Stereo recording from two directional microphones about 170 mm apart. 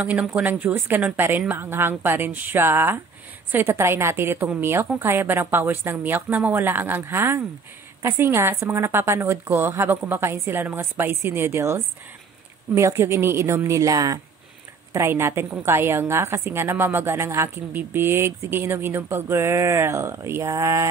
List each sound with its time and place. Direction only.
0.0 s a woman's voice: 10° right (ahead or behind)